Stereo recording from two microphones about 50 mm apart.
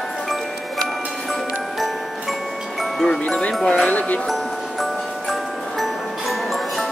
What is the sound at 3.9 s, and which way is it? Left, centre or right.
Music, left.